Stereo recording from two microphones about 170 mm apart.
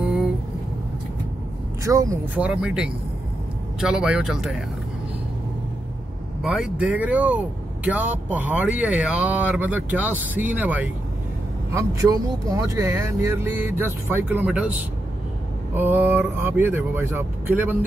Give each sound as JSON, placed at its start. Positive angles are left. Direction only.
{"t": 1.9, "sound": "speech", "side_deg": -20}
{"t": 2.3, "sound": "speech", "side_deg": -5}
{"t": 6.4, "sound": "speech", "side_deg": -5}